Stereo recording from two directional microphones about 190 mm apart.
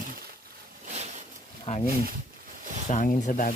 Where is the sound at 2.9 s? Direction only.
40° left (ahead or behind).